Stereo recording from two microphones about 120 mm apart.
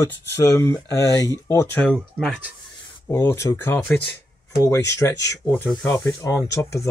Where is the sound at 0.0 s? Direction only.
25° left (ahead or behind).